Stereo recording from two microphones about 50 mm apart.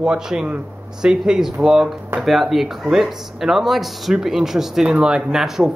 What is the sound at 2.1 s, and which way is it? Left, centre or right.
Speech, centre.